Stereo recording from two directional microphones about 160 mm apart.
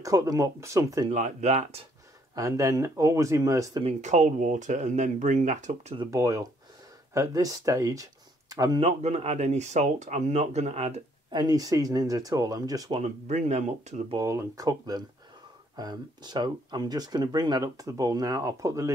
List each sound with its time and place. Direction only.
0.0 s speech: 20° right (ahead or behind)
1.1 s speech: 45° right (ahead or behind)
2.3 s speech: 20° right (ahead or behind)
3.8 s speech: 50° right (ahead or behind)
5.9 s speech: 20° right (ahead or behind)
8.8 s speech: 40° right (ahead or behind)
11.3 s speech: 25° right (ahead or behind)
12.9 s speech: 45° right (ahead or behind)
14.1 s speech: 20° right (ahead or behind)